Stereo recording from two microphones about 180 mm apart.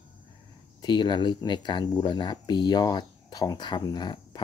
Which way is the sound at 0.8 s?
25° left (ahead or behind).